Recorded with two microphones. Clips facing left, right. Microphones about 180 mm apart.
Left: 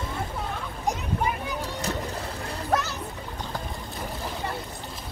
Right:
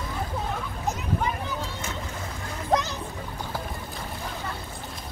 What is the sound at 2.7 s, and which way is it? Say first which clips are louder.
Music: right 2 dB; 15° right (ahead or behind).